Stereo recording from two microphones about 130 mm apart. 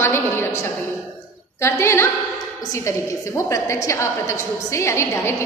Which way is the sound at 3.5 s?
20° left (ahead or behind).